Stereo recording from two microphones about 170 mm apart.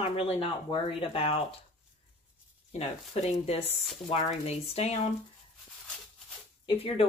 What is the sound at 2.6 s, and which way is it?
Speech, 40° left (ahead or behind).